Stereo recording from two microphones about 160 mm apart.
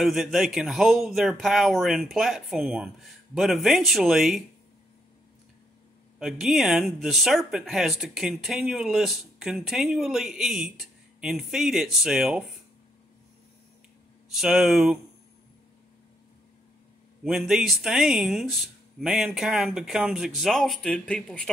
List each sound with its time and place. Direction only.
0.0 s speech: centre (ahead or behind)
6.1 s speech: centre (ahead or behind)
14.3 s speech: centre (ahead or behind)
17.2 s speech: centre (ahead or behind)